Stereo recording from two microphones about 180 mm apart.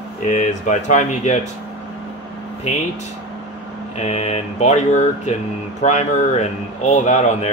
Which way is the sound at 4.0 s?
35° left (ahead or behind).